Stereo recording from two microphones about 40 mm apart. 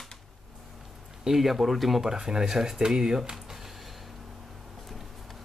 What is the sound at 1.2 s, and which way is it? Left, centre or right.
Speech, centre.